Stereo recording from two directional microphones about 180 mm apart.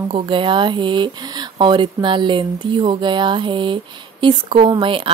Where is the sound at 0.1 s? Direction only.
30° right (ahead or behind).